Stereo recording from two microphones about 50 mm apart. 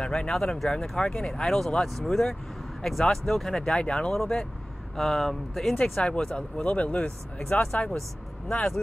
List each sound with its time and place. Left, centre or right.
0.0 s speech: centre
0.3 s speech: centre
3.7 s speech: centre
4.1 s speech: centre
6.0 s speech: centre